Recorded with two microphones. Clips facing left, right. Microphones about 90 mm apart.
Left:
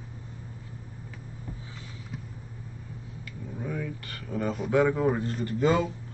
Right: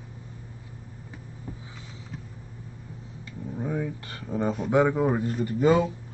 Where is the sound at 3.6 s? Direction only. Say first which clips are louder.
Right 4 dB; 25° right (ahead or behind).